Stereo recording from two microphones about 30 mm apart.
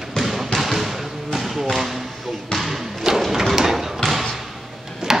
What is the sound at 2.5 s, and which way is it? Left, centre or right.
Thump, centre.